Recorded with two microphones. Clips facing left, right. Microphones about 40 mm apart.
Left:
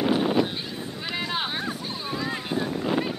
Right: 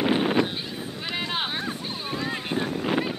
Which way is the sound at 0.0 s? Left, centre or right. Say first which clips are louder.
Even; right.